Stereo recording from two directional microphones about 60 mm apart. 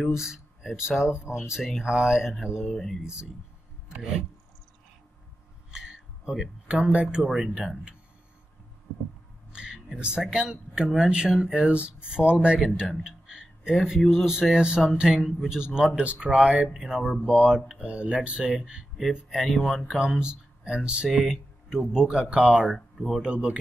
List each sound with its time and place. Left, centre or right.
0.1 s speech: centre
2.7 s speech: centre
3.0 s speech: centre
5.7 s a sound: centre
6.7 s speech: centre
7.2 s speech: centre
9.5 s music: centre
10.2 s speech: centre
16.7 s speech: centre
20.0 s speech: centre
21.1 s speech: centre
22.8 s speech: centre
23.2 s speech: centre